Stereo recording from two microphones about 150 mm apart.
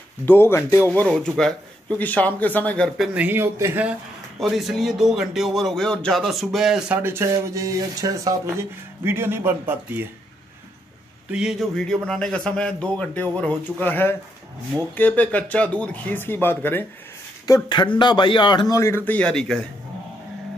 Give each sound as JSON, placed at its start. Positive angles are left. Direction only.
{"t": 0.2, "sound": "a man's voice", "side_deg": 15}
{"t": 1.0, "sound": "a man's voice", "side_deg": 0}
{"t": 3.0, "sound": "speech", "side_deg": -10}
{"t": 4.4, "sound": "speech", "side_deg": 0}
{"t": 7.0, "sound": "speech", "side_deg": -15}
{"t": 11.3, "sound": "a man's voice", "side_deg": 0}
{"t": 17.6, "sound": "a man's voice", "side_deg": 30}